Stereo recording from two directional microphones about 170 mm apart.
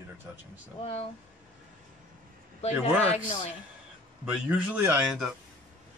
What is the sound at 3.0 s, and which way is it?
Speech, 40° left (ahead or behind).